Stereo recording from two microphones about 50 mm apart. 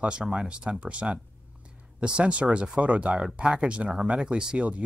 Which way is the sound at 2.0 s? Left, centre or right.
Right.